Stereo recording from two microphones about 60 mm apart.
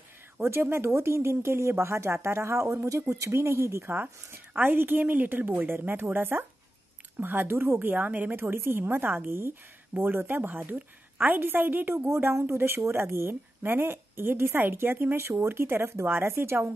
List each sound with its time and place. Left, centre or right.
0.4 s speech: right
3.9 s a woman's voice: right
7.9 s a woman's voice: right
12.1 s a woman's voice: right